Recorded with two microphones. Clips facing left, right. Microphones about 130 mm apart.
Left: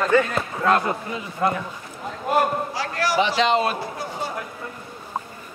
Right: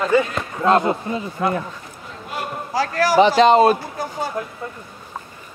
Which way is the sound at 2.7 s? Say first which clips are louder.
Right 6 dB; 45° right (ahead or behind).